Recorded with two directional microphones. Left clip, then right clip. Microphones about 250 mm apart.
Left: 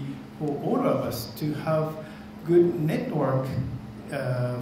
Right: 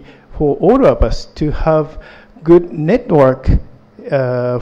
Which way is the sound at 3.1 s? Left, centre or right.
Right.